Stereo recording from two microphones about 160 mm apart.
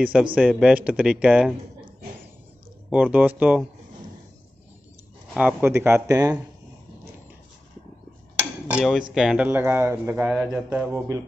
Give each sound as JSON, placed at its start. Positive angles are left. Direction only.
{"t": 0.0, "sound": "speech", "side_deg": -10}
{"t": 2.9, "sound": "speech", "side_deg": -10}
{"t": 5.3, "sound": "speech", "side_deg": -5}
{"t": 8.6, "sound": "cutlery", "side_deg": -5}
{"t": 9.1, "sound": "speech", "side_deg": -5}
{"t": 9.5, "sound": "speech", "side_deg": -15}